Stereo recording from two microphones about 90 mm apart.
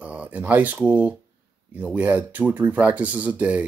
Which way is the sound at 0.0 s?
15° right (ahead or behind).